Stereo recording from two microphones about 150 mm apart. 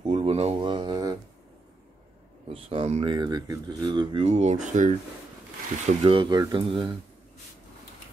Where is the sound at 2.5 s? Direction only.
35° right (ahead or behind); by 4.9 s 55° right (ahead or behind).